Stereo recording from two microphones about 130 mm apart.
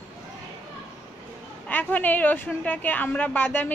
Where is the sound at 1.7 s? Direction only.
15° left (ahead or behind).